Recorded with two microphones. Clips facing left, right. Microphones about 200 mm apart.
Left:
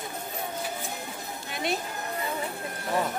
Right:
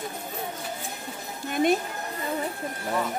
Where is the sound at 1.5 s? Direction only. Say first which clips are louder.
Right 8 dB; 50° right (ahead or behind).